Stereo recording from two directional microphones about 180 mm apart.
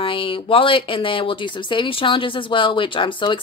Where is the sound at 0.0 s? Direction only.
30° left (ahead or behind).